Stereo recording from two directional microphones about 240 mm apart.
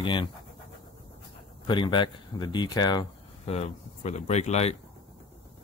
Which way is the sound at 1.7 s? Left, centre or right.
Centre.